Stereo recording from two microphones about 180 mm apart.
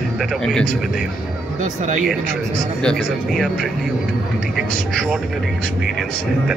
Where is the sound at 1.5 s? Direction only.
45° right (ahead or behind).